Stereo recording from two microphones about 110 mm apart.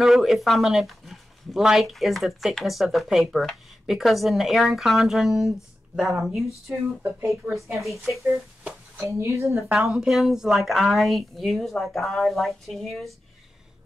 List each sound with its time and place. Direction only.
0.0 s speech: centre (ahead or behind)
7.0 s speech: 20° right (ahead or behind)
7.5 s speech: centre (ahead or behind)
9.0 s speech: 25° right (ahead or behind)
9.6 s speech: 5° right (ahead or behind)